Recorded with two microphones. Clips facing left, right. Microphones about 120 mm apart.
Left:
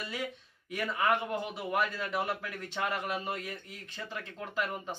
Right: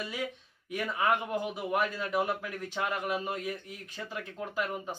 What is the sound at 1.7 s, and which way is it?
Speech, 15° right (ahead or behind).